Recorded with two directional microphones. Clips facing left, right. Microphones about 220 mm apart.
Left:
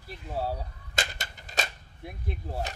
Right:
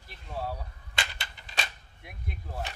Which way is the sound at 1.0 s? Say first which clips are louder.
Left 4 dB; 45° left (ahead or behind).